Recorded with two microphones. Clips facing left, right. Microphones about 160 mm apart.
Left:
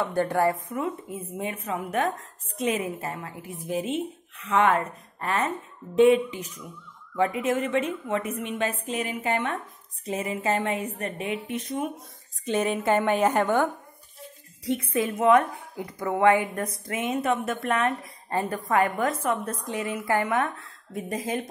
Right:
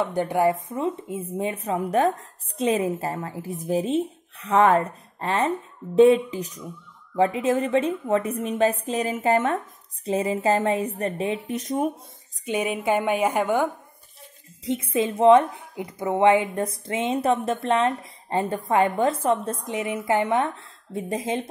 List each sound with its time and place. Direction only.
0.0 s speech: 15° right (ahead or behind); by 11.9 s 40° right (ahead or behind)
12.4 s a woman's voice: 10° right (ahead or behind)
14.6 s a woman's voice: 20° right (ahead or behind)